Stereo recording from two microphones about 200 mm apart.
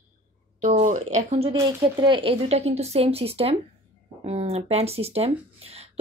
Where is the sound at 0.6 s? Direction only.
40° right (ahead or behind).